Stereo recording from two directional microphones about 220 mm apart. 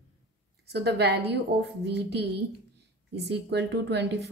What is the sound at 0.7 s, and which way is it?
A woman's voice, 50° right (ahead or behind).